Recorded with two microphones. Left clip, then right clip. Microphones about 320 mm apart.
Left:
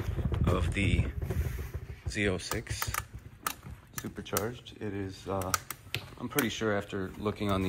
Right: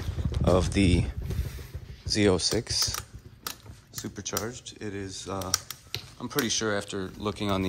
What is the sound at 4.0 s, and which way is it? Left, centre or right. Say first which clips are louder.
Speech: right 1 dB; centre.